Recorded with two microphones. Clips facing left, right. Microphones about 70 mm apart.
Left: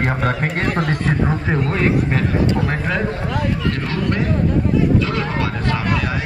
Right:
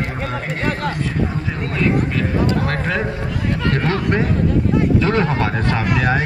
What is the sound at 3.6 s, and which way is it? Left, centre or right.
Speech, right.